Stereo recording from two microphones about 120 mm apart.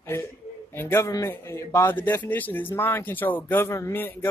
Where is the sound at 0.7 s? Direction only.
20° left (ahead or behind).